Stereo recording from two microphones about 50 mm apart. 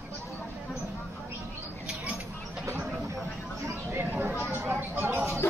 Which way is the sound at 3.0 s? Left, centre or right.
Right.